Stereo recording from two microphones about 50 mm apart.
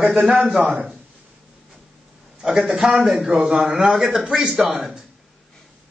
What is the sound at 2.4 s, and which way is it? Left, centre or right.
A man's voice, centre.